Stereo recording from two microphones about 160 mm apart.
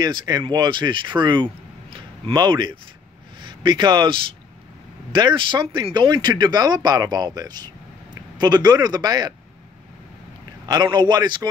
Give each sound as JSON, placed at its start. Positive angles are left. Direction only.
{"t": 0.0, "sound": "speech", "side_deg": -25}
{"t": 10.7, "sound": "speech", "side_deg": -25}